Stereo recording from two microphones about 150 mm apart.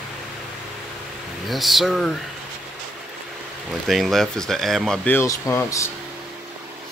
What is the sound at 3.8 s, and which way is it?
Speech, centre (ahead or behind).